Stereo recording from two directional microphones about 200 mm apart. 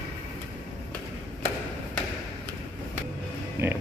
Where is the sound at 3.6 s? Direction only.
15° right (ahead or behind).